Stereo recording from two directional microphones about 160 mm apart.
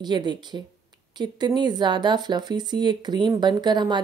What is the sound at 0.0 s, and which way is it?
Speech, 25° right (ahead or behind).